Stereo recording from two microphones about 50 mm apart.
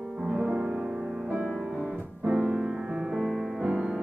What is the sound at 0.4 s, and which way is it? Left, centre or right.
Music, right.